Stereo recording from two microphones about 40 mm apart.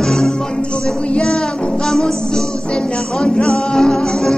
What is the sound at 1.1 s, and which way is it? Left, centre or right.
Child singing, centre.